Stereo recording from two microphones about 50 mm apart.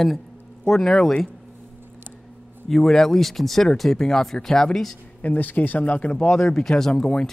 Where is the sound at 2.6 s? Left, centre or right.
Centre.